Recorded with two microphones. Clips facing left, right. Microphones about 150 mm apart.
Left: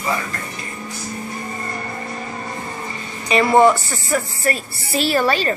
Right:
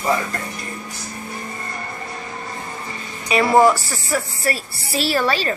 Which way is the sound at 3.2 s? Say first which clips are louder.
Left 1 dB; 5° right (ahead or behind).